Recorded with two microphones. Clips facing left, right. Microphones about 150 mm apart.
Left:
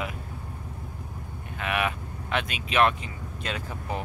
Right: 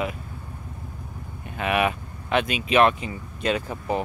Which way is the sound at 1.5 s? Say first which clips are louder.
Right 5 dB; 10° right (ahead or behind).